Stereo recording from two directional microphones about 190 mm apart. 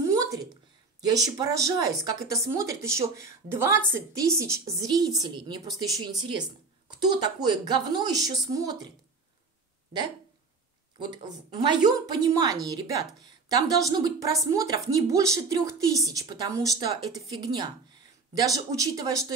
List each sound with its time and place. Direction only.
0.0 s a sound: 15° right (ahead or behind)
1.1 s a woman's voice: 20° right (ahead or behind)
11.0 s a woman's voice: 20° right (ahead or behind)